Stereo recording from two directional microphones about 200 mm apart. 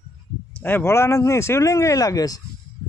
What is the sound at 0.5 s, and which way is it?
Speech, 10° left (ahead or behind).